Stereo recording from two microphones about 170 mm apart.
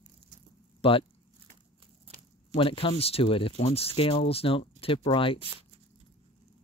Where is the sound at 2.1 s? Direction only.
35° right (ahead or behind).